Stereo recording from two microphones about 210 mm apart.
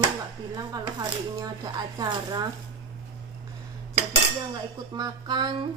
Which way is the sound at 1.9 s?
20° right (ahead or behind).